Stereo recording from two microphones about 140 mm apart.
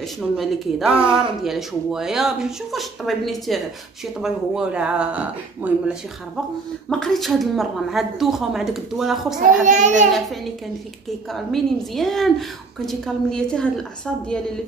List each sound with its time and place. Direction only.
0.4 s speech: centre (ahead or behind)
6.9 s speech: centre (ahead or behind)
9.6 s a child's voice: 60° right (ahead or behind)
11.3 s speech: centre (ahead or behind)